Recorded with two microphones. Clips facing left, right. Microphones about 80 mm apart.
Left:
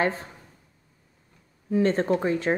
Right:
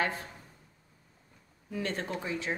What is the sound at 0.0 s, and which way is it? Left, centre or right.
Speech, left.